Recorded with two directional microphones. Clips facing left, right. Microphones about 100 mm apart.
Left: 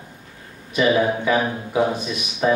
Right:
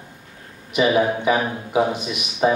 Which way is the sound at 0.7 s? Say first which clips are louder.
Even; 20° right (ahead or behind).